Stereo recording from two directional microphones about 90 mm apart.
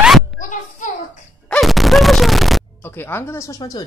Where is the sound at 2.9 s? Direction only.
25° left (ahead or behind).